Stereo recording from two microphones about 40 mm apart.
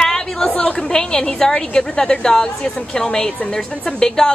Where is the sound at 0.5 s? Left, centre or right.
Left.